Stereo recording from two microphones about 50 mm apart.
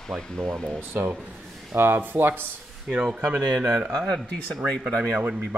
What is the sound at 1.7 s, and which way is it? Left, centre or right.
Speech, right.